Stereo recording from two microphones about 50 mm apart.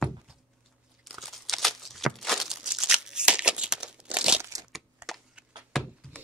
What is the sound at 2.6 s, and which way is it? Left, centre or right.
Crumpling, centre.